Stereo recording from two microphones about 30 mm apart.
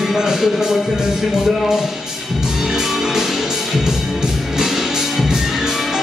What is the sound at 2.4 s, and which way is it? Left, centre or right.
Music, centre.